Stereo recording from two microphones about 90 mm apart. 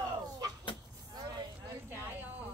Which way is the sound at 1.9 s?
20° right (ahead or behind).